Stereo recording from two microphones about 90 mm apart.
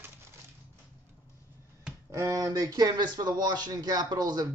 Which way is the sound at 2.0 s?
40° right (ahead or behind).